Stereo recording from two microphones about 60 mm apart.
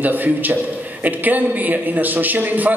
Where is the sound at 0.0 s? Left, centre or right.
Right.